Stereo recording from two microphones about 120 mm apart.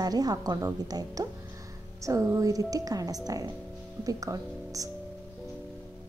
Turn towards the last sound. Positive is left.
turn(degrees=-30)  # may be behind; listen again after turning